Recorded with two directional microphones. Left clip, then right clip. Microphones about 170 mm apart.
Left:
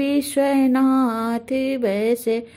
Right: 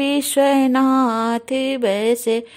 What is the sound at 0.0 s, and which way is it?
Mantra, 35° right (ahead or behind).